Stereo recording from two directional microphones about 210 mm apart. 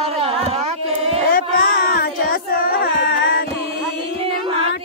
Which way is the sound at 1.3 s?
45° left (ahead or behind).